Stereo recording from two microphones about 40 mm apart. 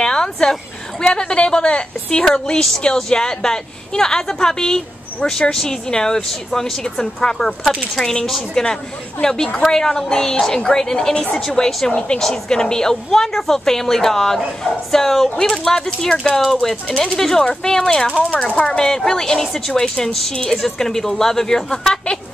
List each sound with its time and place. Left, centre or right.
0.0 s a sound: centre
2.2 s a woman's voice: left
18.4 s speech: left
18.7 s a woman's voice: centre